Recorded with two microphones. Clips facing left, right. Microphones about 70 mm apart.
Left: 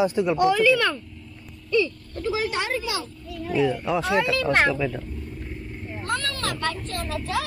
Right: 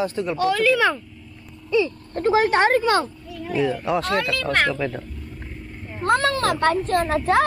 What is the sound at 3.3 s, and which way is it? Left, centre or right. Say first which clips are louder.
Speech: left 5 dB; centre.